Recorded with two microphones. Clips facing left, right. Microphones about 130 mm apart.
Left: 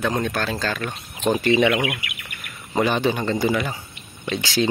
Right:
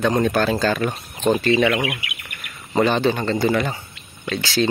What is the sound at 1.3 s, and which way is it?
A man's voice, 15° left (ahead or behind).